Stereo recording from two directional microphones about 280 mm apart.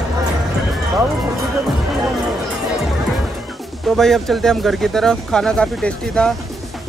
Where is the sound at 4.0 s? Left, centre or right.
Centre.